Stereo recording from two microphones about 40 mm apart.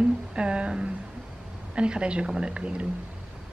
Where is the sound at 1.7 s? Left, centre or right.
Right.